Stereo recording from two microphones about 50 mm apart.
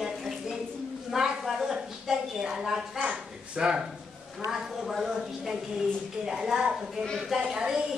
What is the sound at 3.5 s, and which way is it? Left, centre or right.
A woman's voice, centre.